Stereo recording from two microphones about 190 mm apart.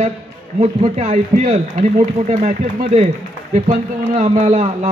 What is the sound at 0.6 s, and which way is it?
A man's voice, 35° right (ahead or behind).